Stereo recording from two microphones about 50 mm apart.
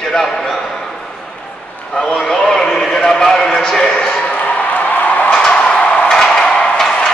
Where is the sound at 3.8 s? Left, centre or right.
Left.